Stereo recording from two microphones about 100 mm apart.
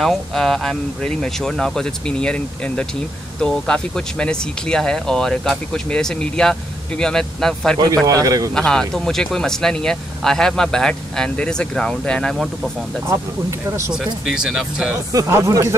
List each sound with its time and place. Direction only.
0.0 s speech: centre (ahead or behind)
7.8 s speech: 35° right (ahead or behind)
8.5 s speech: 5° left (ahead or behind)
13.7 s speech: 30° right (ahead or behind)
14.2 s speech: 5° right (ahead or behind)
15.1 s speech: 30° right (ahead or behind)